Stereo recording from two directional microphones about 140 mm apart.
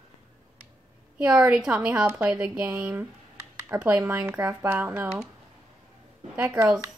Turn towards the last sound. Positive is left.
turn(degrees=-15)  # may be behind; listen again after turning